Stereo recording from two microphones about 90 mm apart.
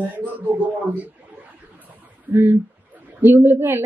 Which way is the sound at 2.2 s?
20° right (ahead or behind).